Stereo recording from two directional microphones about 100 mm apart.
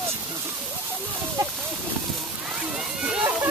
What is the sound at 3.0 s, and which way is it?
Slosh, 10° right (ahead or behind).